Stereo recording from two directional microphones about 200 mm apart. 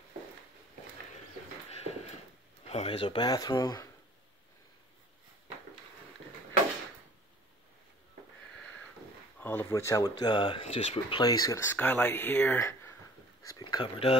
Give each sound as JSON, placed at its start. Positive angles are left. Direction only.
{"t": 2.7, "sound": "speech", "side_deg": 30}
{"t": 9.4, "sound": "speech", "side_deg": 10}